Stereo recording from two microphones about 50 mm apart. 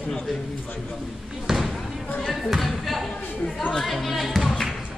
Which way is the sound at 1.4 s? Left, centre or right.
Centre.